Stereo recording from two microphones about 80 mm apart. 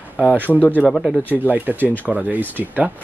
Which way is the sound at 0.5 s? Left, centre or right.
Left.